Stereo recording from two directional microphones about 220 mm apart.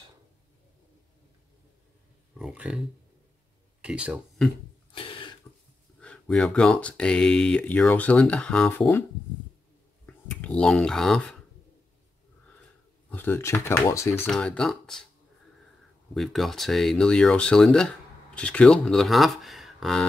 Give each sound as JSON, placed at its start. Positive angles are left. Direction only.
{"t": 2.3, "sound": "speech", "side_deg": -5}
{"t": 3.8, "sound": "speech", "side_deg": -5}
{"t": 4.9, "sound": "a sound", "side_deg": 25}
{"t": 5.9, "sound": "speech", "side_deg": 5}
{"t": 10.0, "sound": "speech", "side_deg": 5}
{"t": 13.1, "sound": "speech", "side_deg": 10}
{"t": 16.2, "sound": "speech", "side_deg": 0}